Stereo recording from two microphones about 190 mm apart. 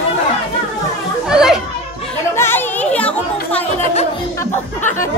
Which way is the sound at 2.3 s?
10° left (ahead or behind).